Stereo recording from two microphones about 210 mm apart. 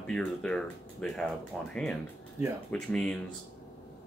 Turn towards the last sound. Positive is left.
turn(degrees=5)  # may be behind; listen again after turning